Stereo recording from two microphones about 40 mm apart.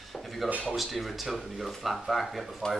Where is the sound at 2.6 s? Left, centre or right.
Centre.